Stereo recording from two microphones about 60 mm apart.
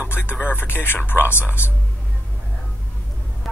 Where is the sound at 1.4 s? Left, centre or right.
Right.